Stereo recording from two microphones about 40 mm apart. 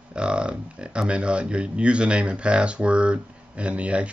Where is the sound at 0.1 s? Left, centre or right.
Right.